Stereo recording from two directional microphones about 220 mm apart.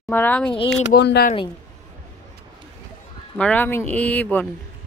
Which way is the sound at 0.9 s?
50° left (ahead or behind).